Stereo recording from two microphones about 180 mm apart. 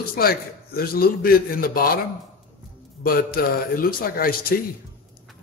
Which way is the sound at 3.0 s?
55° left (ahead or behind).